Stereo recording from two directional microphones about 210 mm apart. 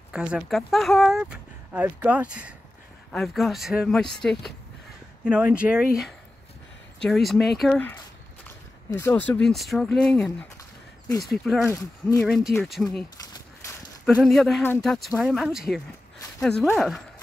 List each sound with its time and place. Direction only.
0.1 s speech: 5° right (ahead or behind)
7.0 s speech: centre (ahead or behind)
8.9 s speech: 10° left (ahead or behind)
10.6 s a sound: 15° left (ahead or behind)
11.3 s speech: centre (ahead or behind)
11.6 s speech: 15° left (ahead or behind)
12.8 s speech: centre (ahead or behind)
14.0 s speech: centre (ahead or behind)
16.2 s a sound: 10° left (ahead or behind)
16.6 s speech: centre (ahead or behind)